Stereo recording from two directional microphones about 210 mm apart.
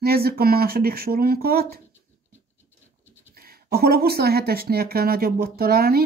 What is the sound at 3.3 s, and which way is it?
Speech, 45° right (ahead or behind).